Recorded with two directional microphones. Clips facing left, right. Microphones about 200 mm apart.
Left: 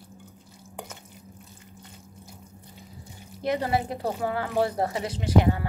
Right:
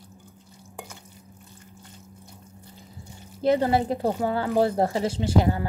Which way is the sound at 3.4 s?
30° right (ahead or behind).